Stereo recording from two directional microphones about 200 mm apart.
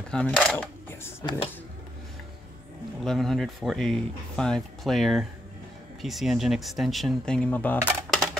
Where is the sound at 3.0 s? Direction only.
Centre (ahead or behind).